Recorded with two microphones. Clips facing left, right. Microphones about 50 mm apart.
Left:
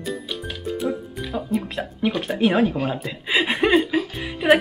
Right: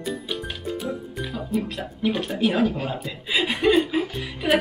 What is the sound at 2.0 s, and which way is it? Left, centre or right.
Speech, left.